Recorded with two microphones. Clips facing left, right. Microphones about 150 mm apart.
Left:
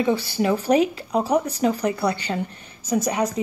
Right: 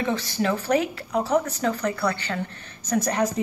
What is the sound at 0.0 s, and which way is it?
A woman's voice, 15° left (ahead or behind).